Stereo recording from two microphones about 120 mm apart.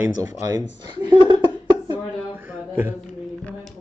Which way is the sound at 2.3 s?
15° right (ahead or behind).